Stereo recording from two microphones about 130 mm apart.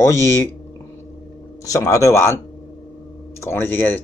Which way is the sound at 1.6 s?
25° left (ahead or behind).